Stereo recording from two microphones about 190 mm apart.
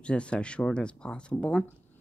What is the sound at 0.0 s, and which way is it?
Speech, 5° left (ahead or behind).